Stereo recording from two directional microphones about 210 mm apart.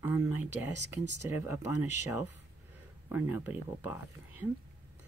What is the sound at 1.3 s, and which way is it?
Speech, 10° right (ahead or behind).